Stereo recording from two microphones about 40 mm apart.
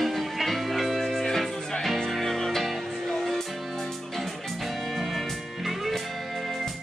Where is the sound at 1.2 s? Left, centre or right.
Centre.